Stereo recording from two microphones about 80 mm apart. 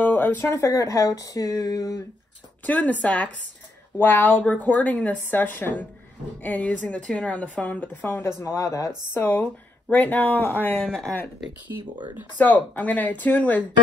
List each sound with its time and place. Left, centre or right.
0.0 s a sound: left
0.6 s speech: left
2.6 s a woman's voice: centre
8.2 s speech: left
9.1 s a woman's voice: left
10.8 s speech: centre
12.4 s a woman's voice: left